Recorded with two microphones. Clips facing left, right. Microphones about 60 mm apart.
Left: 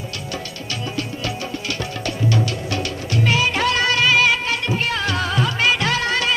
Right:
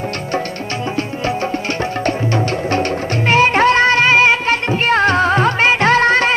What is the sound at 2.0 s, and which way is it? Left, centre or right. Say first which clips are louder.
Music: right 2 dB; right.